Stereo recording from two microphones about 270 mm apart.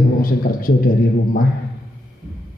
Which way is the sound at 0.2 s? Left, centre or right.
Left.